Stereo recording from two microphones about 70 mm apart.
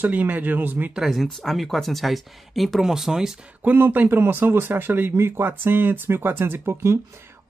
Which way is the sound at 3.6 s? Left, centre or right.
Right.